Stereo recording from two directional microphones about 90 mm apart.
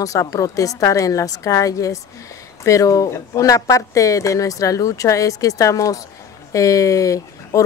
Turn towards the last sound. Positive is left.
turn(degrees=35)  # may be behind; listen again after turning